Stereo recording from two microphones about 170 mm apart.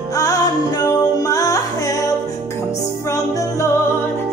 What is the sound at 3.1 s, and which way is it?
Music, 20° left (ahead or behind).